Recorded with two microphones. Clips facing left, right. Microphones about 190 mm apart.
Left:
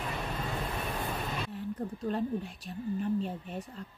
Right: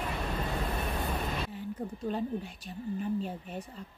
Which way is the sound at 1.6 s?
Centre (ahead or behind).